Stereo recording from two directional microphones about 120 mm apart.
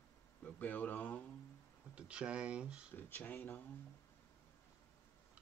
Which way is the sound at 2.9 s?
15° left (ahead or behind).